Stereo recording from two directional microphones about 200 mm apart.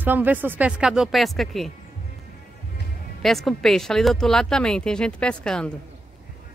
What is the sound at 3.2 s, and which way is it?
Speech, centre (ahead or behind).